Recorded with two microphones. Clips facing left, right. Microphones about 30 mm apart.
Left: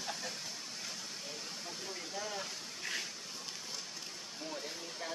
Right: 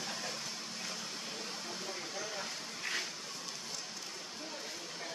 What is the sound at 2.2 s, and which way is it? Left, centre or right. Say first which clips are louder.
Hiss: even; centre.